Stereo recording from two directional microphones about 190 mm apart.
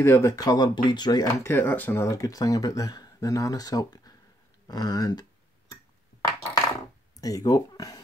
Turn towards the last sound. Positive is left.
turn(degrees=20)  # may be behind; listen again after turning